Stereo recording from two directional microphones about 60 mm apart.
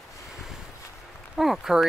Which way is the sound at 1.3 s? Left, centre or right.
Centre.